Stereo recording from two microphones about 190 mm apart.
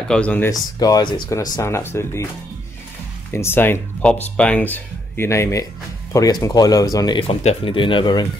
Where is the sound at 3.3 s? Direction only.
10° left (ahead or behind).